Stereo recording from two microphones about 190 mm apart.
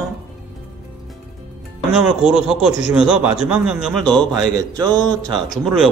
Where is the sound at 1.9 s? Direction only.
5° right (ahead or behind).